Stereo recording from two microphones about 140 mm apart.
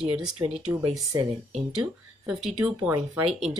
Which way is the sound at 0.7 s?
25° right (ahead or behind).